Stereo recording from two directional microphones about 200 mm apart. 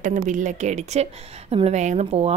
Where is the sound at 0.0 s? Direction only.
40° right (ahead or behind).